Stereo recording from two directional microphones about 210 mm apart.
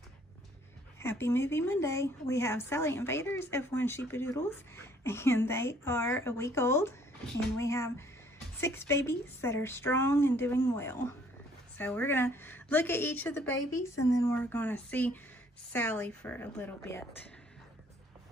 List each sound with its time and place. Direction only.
0.9 s speech: 10° left (ahead or behind)